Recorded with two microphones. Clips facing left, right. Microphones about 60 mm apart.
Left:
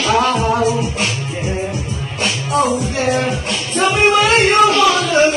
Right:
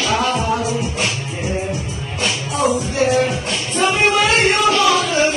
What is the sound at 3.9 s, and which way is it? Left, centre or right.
Music, left.